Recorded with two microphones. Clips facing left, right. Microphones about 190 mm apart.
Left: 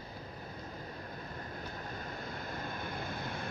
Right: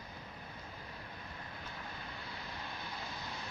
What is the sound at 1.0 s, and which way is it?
Vehicle, 45° left (ahead or behind).